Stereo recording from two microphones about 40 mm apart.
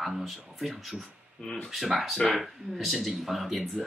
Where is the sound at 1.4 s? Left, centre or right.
Centre.